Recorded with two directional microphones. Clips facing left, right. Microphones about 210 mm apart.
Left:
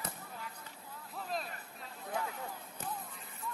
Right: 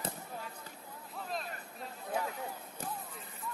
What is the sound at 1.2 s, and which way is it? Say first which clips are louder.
Hubbub: left 1 dB; centre (ahead or behind).